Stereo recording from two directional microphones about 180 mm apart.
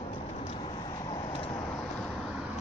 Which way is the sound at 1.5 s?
10° left (ahead or behind).